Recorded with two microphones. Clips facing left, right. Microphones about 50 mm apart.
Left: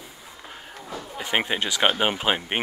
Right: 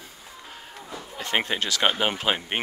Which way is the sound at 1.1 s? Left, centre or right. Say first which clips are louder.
Left 1 dB; centre.